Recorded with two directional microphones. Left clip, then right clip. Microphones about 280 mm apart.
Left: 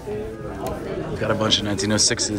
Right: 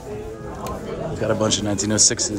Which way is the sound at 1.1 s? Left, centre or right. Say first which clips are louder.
Left 1 dB; centre.